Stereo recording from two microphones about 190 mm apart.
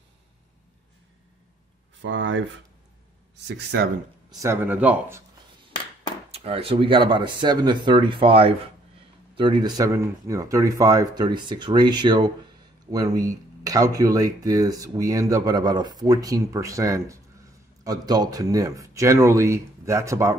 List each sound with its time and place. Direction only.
2.0 s speech: 75° right (ahead or behind)
3.4 s speech: 60° right (ahead or behind)
4.4 s speech: 10° right (ahead or behind)
6.3 s speech: 30° right (ahead or behind)